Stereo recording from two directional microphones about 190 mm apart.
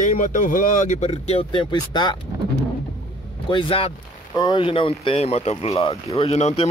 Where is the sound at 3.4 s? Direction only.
25° left (ahead or behind).